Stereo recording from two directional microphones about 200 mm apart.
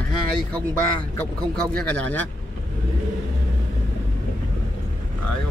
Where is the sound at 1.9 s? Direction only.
5° left (ahead or behind).